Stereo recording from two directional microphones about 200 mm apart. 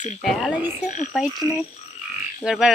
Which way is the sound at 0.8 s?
40° left (ahead or behind).